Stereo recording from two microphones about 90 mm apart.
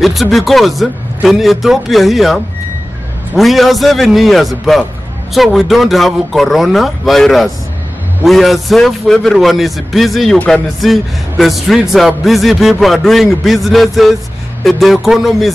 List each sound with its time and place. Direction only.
0.0 s speech: centre (ahead or behind)